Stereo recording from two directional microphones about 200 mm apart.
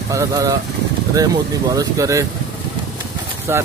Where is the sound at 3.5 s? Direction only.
15° right (ahead or behind).